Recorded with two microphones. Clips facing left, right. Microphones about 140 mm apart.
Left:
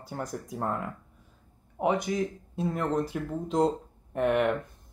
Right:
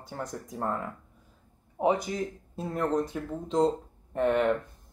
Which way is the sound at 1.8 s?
30° right (ahead or behind).